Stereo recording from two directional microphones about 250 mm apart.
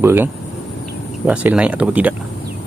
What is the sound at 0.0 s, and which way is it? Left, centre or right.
Speech, centre.